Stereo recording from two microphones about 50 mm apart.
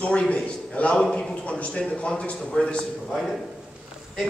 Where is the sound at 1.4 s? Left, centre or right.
Left.